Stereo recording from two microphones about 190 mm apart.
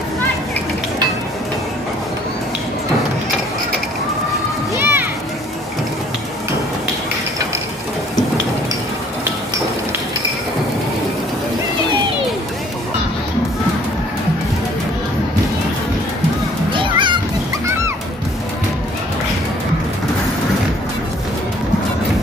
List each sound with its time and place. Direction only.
4.7 s children playing: 10° right (ahead or behind)
16.8 s children playing: 25° right (ahead or behind)